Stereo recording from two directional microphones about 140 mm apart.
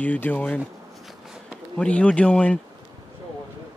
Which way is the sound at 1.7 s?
10° left (ahead or behind).